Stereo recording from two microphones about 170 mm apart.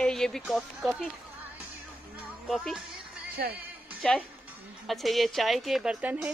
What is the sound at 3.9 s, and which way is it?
A woman's voice, 5° left (ahead or behind).